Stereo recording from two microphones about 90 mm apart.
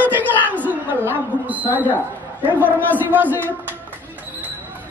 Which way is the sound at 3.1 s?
20° right (ahead or behind).